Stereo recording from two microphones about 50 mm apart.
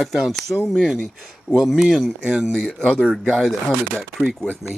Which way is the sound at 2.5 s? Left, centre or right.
Centre.